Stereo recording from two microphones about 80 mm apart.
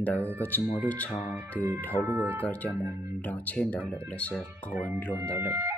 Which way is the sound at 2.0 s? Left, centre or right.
Right.